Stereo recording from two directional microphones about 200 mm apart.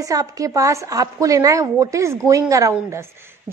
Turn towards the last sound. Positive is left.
turn(degrees=-10)  # may be behind; listen again after turning